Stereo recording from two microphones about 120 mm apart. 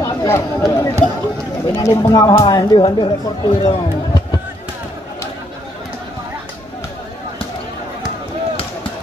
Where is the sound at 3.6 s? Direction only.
35° left (ahead or behind).